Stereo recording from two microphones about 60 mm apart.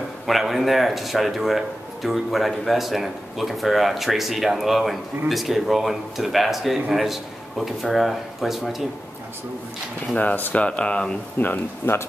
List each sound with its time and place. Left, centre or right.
0.3 s speech: centre
10.1 s speech: left
11.3 s speech: left